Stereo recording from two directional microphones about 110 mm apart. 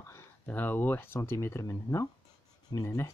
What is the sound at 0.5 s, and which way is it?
Speech, 15° left (ahead or behind).